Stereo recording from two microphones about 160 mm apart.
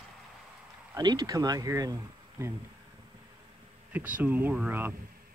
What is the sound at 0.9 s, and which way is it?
Speech, 25° right (ahead or behind).